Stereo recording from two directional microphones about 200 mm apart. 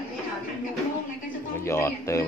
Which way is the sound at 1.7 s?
15° left (ahead or behind).